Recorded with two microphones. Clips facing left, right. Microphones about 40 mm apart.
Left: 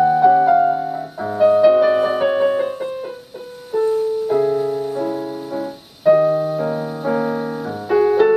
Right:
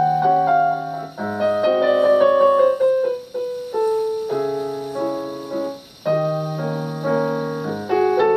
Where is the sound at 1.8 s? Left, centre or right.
Centre.